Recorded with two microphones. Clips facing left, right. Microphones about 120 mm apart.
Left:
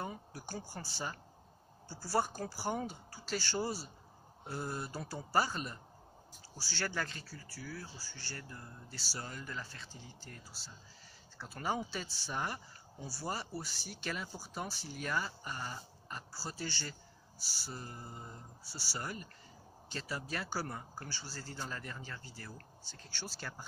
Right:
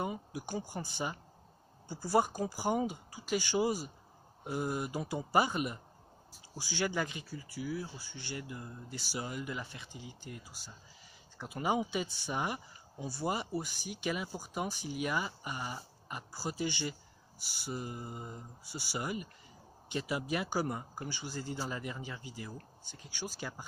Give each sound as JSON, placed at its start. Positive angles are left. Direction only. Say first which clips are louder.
{"t": 0.0, "sound": "speech", "louder": "right 5 dB", "side_deg": -15}